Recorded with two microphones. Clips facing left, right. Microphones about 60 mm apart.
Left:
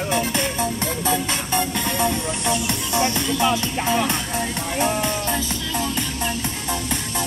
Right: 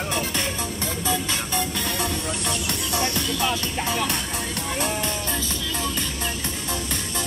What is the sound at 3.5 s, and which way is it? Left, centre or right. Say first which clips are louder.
Music: left 5 dB; centre.